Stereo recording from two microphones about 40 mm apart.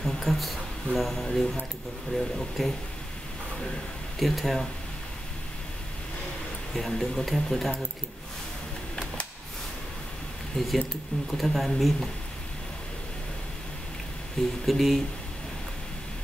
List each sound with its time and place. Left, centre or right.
0.0 s a sound: centre
0.9 s speech: centre
4.2 s speech: centre
6.7 s speech: centre
10.6 s speech: centre
11.3 s speech: centre
14.4 s speech: centre
14.7 s speech: centre